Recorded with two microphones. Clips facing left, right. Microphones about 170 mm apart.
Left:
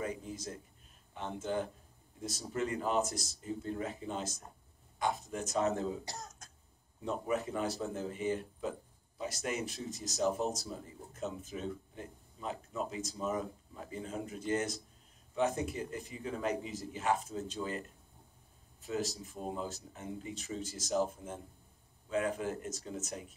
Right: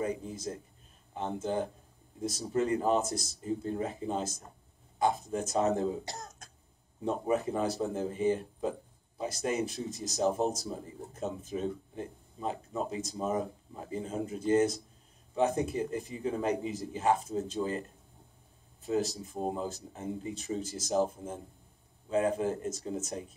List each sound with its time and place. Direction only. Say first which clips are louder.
0.0 s speech: right 5 dB; 30° right (ahead or behind)
7.2 s speech: right 4 dB; 30° right (ahead or behind)
18.9 s speech: right 6 dB; 30° right (ahead or behind)